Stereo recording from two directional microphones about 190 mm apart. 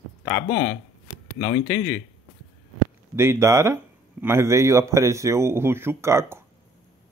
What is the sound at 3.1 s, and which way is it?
Speech, 15° right (ahead or behind).